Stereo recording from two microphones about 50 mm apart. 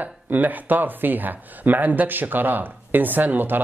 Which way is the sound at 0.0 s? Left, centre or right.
Right.